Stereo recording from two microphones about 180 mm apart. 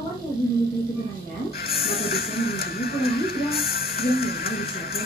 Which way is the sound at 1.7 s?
60° left (ahead or behind).